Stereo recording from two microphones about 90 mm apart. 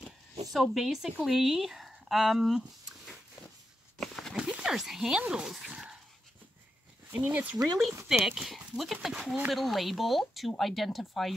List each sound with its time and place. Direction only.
0.0 s a sound: centre (ahead or behind)
1.2 s speech: centre (ahead or behind)
4.0 s a sound: centre (ahead or behind)
4.4 s speech: 10° right (ahead or behind)
5.7 s dog: 10° right (ahead or behind)
7.1 s speech: 20° right (ahead or behind)
7.5 s speech: 45° right (ahead or behind)
8.3 s speech: centre (ahead or behind)